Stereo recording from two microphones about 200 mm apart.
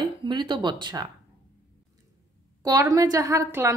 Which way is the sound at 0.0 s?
25° right (ahead or behind).